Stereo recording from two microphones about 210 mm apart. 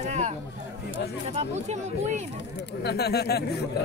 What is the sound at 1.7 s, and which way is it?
Speech, 35° right (ahead or behind).